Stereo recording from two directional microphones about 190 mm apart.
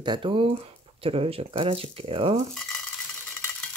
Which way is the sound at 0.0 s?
25° right (ahead or behind).